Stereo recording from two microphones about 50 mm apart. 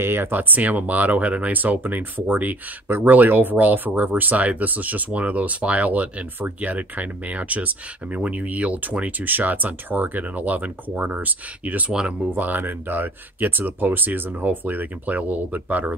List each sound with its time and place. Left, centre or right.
0.0 s speech: right
9.2 s speech: right
11.9 s speech: centre
12.4 s speech: right